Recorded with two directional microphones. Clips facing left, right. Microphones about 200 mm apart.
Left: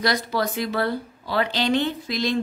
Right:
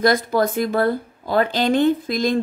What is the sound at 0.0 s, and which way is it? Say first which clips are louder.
Speech: right 6 dB; 50° right (ahead or behind).